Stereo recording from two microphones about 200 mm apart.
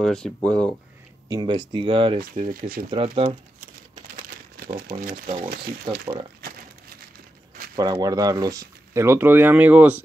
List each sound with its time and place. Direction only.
0.0 s speech: 5° left (ahead or behind)
1.3 s speech: 20° right (ahead or behind)
2.1 s speech: 45° right (ahead or behind)
2.9 s speech: 25° right (ahead or behind)
3.3 s crumpling: 45° right (ahead or behind)
5.9 s speech: 25° right (ahead or behind)
7.7 s speech: 20° right (ahead or behind)